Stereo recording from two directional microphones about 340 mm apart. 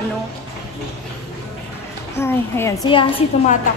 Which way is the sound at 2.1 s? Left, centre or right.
Centre.